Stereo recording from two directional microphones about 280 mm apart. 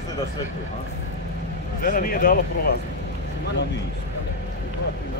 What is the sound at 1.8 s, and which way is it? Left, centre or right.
Speech, left.